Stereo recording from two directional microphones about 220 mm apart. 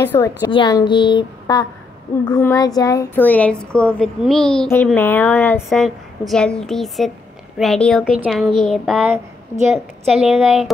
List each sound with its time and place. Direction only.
0.0 s a woman's voice: 10° left (ahead or behind)